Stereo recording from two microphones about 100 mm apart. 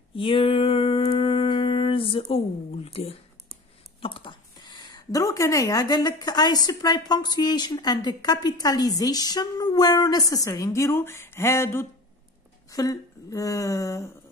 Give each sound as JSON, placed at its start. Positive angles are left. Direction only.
{"t": 0.1, "sound": "a sound", "side_deg": 60}
{"t": 4.0, "sound": "a woman's voice", "side_deg": 55}
{"t": 12.6, "sound": "a woman's voice", "side_deg": 35}